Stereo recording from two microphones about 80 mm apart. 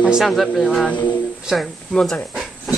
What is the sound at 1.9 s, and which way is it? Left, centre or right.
Speech, centre.